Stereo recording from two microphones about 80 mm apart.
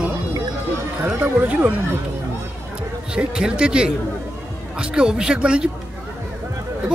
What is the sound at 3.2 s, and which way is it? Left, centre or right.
Speech, centre.